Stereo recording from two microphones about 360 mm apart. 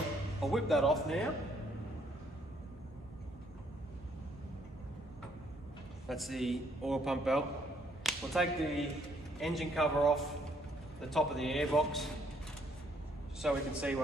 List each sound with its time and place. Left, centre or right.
0.4 s a man's voice: centre
6.0 s a man's voice: centre
8.0 s whip: centre
9.4 s a man's voice: centre
13.4 s a man's voice: centre